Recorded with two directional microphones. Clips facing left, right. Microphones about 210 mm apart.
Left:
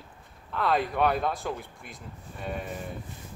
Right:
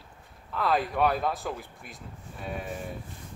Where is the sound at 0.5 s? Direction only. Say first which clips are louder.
Even; centre (ahead or behind).